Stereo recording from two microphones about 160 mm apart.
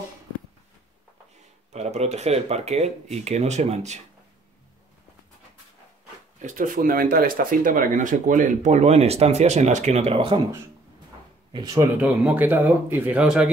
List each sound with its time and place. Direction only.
1.7 s speech: 45° right (ahead or behind)
6.4 s speech: 55° right (ahead or behind); by 10.4 s 35° right (ahead or behind)
11.5 s speech: 25° right (ahead or behind)
12.0 s speech: 5° right (ahead or behind)